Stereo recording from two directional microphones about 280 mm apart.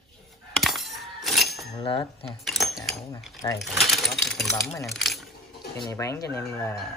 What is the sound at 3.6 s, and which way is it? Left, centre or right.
Speech, centre.